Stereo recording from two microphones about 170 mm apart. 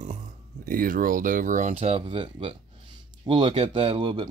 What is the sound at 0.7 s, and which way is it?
Speech, 55° right (ahead or behind).